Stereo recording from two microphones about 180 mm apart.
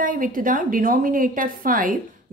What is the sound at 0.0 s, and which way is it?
A woman's voice, 50° right (ahead or behind).